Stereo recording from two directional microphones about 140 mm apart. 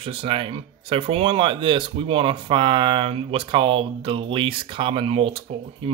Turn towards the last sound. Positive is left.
turn(degrees=-40)  # may be behind; listen again after turning